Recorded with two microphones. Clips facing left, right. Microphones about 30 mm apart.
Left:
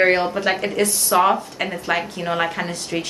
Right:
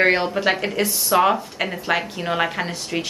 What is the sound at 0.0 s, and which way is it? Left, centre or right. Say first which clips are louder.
A woman's voice: left 1 dB; centre.